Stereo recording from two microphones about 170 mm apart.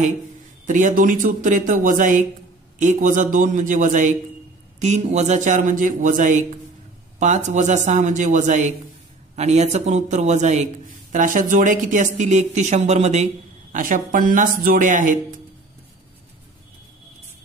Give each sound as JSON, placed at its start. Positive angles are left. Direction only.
{"t": 0.7, "sound": "speech", "side_deg": -50}